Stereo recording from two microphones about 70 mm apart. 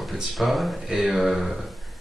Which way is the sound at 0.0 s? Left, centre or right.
Centre.